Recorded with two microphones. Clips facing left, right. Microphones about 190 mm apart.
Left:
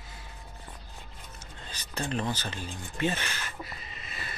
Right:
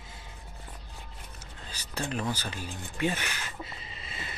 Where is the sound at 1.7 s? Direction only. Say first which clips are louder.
Left 1 dB; 10° right (ahead or behind).